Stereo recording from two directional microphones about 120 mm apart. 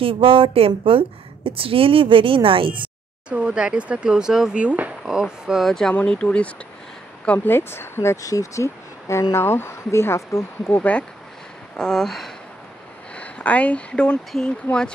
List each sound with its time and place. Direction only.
0.0 s a woman's voice: 45° right (ahead or behind)
3.3 s speech: 10° right (ahead or behind)